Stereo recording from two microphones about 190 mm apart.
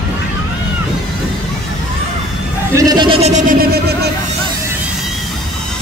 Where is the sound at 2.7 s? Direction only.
20° right (ahead or behind); by 3.5 s 35° right (ahead or behind).